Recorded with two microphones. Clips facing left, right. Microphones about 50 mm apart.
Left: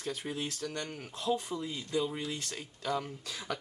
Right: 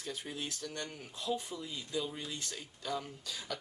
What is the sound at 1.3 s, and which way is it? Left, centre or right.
Speech, left.